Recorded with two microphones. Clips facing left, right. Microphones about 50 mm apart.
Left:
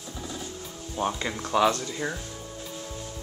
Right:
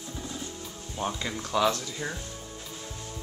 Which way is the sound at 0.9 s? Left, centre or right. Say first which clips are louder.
Left 3 dB; centre.